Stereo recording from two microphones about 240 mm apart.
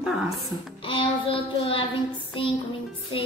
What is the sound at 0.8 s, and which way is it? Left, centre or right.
A child's voice, left.